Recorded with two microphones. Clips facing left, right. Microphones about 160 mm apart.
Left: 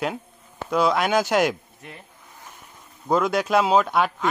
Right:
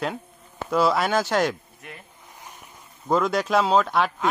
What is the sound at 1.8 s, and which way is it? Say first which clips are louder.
Speech: even; 30° left (ahead or behind).